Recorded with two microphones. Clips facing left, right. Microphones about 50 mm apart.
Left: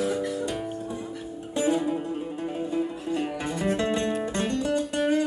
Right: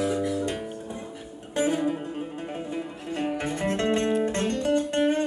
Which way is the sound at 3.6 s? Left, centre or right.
Right.